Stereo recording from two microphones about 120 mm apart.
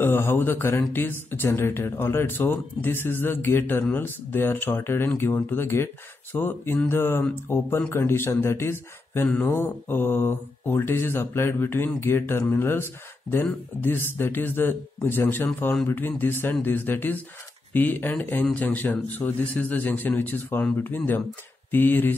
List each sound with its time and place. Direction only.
0.0 s speech: 20° left (ahead or behind)
6.3 s a sound: 20° left (ahead or behind)
7.9 s speech: 20° left (ahead or behind)